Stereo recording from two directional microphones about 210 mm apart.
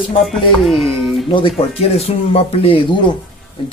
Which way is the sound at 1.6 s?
30° left (ahead or behind).